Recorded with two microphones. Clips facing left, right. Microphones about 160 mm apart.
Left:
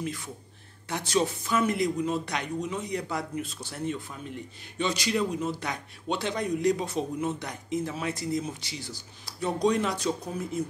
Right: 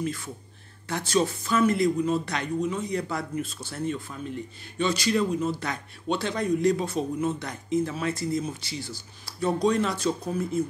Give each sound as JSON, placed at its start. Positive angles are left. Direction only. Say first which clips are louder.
{"t": 0.0, "sound": "a man's voice", "louder": "right 3 dB", "side_deg": 15}